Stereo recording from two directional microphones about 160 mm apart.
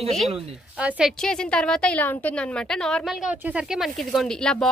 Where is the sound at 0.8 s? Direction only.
5° right (ahead or behind).